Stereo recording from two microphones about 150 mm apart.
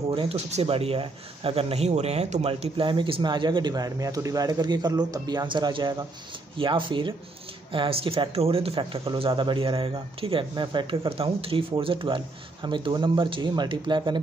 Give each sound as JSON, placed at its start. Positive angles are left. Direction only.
{"t": 0.1, "sound": "speech", "side_deg": -40}